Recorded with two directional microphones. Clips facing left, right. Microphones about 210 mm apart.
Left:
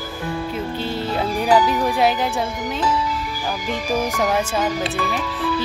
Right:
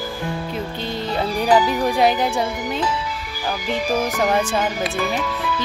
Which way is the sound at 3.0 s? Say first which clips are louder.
Left 4 dB; 40° left (ahead or behind).